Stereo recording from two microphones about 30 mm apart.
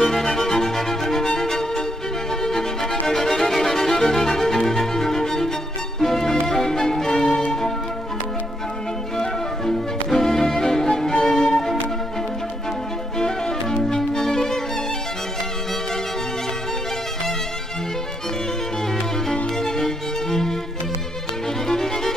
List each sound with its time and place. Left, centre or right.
0.0 s music: centre
9.2 s music: centre
13.2 s music: centre
19.6 s music: centre
21.6 s music: centre